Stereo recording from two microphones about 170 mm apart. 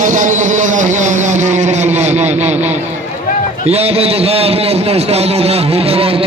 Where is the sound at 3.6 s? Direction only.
35° right (ahead or behind).